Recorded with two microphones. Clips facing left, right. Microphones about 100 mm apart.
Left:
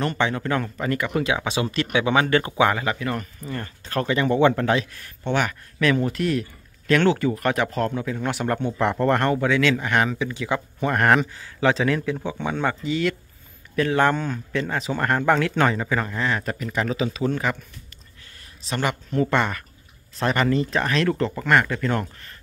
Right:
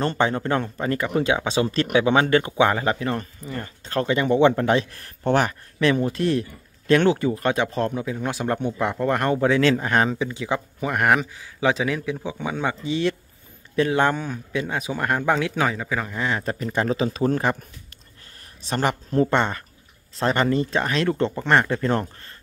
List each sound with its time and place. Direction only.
0.0 s speech: 30° right (ahead or behind)
5.2 s speech: 45° right (ahead or behind)
5.5 s speech: 30° right (ahead or behind); by 9.3 s 10° right (ahead or behind)
9.3 s speech: 30° right (ahead or behind)
10.8 s speech: 10° right (ahead or behind)
12.8 s speech: 25° right (ahead or behind); by 16.3 s 10° right (ahead or behind)
16.3 s speech: 25° right (ahead or behind); by 17.6 s 40° right (ahead or behind)
18.7 s speech: 40° right (ahead or behind)